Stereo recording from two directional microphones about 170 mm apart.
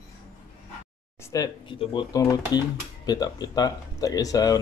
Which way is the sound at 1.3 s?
20° left (ahead or behind).